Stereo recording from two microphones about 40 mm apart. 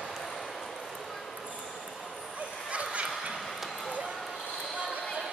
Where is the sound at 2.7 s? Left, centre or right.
Right.